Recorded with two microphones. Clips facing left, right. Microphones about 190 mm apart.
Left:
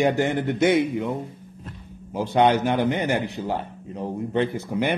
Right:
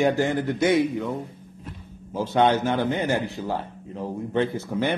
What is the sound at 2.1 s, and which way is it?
A man's voice, 15° left (ahead or behind).